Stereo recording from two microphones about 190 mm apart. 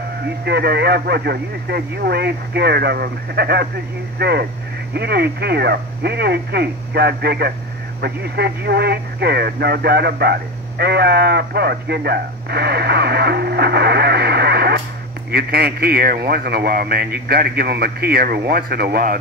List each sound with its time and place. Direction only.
0.5 s speech: 60° right (ahead or behind)